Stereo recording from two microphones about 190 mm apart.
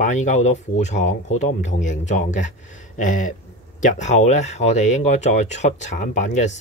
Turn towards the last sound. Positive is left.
turn(degrees=40)  # may be behind; listen again after turning